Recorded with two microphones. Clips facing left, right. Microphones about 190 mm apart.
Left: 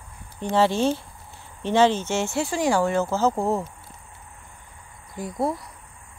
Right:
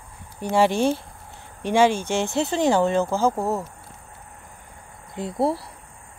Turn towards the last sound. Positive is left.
turn(degrees=-30)  # may be behind; listen again after turning